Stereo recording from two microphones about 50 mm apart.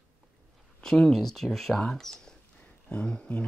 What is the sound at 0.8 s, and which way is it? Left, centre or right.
Speech, centre.